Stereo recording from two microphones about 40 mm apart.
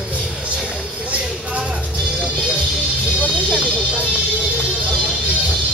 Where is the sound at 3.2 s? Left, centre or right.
Right.